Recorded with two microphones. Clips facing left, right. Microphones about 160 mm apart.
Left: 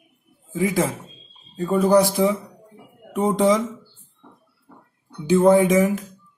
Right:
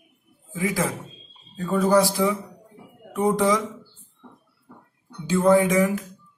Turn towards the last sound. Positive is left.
turn(degrees=20)  # may be behind; listen again after turning